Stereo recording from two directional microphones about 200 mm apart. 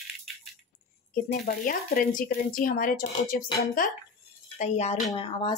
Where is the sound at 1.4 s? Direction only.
50° left (ahead or behind).